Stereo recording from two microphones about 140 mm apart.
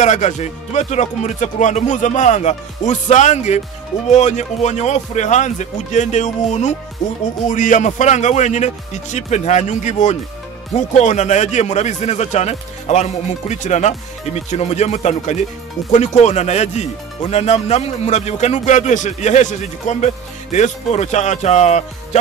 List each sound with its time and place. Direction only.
0.0 s speech: 60° left (ahead or behind)